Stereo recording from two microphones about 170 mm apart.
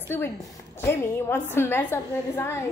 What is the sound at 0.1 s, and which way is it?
A woman's voice, 15° left (ahead or behind).